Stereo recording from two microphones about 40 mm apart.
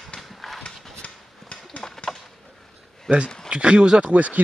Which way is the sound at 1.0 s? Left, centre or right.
Left.